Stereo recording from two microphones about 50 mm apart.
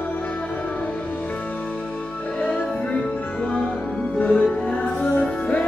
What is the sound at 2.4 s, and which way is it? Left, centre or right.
Music, left.